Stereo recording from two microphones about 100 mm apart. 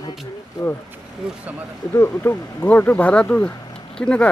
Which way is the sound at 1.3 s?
15° right (ahead or behind).